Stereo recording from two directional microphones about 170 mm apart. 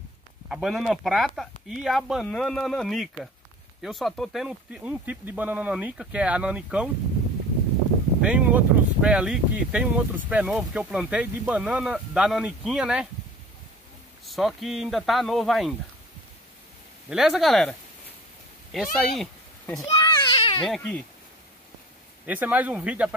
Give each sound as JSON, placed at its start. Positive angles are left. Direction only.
{"t": 0.5, "sound": "speech", "side_deg": 0}
{"t": 8.2, "sound": "speech", "side_deg": -5}
{"t": 14.2, "sound": "speech", "side_deg": 0}
{"t": 17.1, "sound": "speech", "side_deg": 0}
{"t": 19.9, "sound": "a sound", "side_deg": 30}
{"t": 20.6, "sound": "speech", "side_deg": 5}
{"t": 22.2, "sound": "speech", "side_deg": -10}